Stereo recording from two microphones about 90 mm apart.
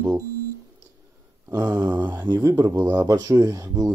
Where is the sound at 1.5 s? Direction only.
50° right (ahead or behind).